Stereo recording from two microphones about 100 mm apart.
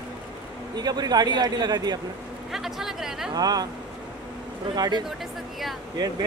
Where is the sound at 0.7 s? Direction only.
40° right (ahead or behind).